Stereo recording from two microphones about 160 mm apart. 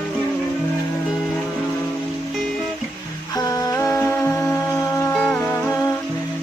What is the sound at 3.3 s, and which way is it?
Music, 20° left (ahead or behind).